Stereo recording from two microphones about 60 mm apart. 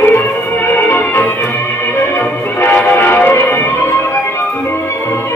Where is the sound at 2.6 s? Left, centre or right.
Left.